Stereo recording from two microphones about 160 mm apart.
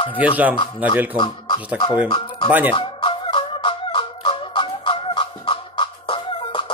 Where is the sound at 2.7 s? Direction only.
30° left (ahead or behind).